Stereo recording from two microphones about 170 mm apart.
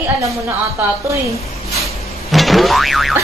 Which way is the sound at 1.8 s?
Centre (ahead or behind).